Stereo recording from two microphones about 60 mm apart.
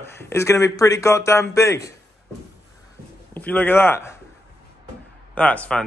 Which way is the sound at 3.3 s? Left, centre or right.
Left.